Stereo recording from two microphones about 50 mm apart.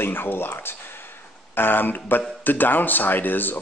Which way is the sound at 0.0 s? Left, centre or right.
Left.